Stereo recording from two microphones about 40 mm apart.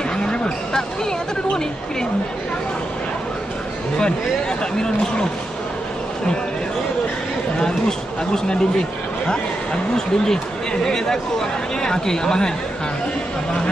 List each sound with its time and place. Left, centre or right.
0.2 s a sound: left
4.0 s speech: centre
9.9 s speech: centre